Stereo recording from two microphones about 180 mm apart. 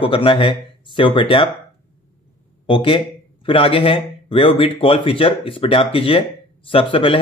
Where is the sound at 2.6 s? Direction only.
30° left (ahead or behind).